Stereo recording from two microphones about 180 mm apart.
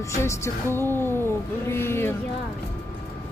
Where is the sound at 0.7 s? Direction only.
10° left (ahead or behind).